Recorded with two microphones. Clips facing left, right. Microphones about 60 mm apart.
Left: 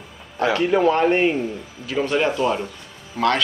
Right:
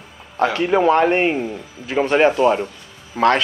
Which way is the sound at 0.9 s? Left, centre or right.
Right.